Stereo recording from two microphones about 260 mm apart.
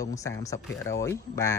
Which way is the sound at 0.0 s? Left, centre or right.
Centre.